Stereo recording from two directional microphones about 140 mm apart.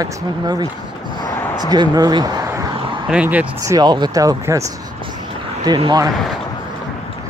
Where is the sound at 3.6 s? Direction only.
25° right (ahead or behind).